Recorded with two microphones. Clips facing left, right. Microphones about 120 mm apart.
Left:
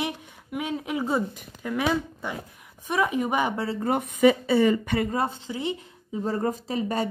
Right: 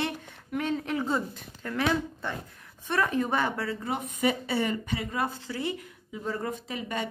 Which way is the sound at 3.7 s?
50° left (ahead or behind).